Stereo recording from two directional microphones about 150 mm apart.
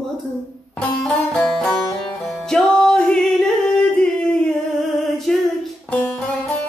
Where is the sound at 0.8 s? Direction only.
5° left (ahead or behind).